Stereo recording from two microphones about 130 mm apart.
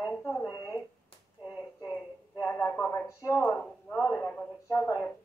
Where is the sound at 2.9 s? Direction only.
25° left (ahead or behind).